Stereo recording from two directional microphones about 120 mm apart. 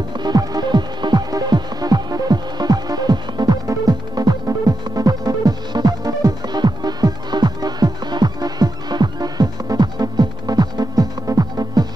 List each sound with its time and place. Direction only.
0.2 s music: 35° right (ahead or behind)